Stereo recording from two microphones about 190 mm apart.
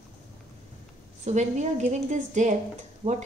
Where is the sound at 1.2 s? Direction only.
35° right (ahead or behind).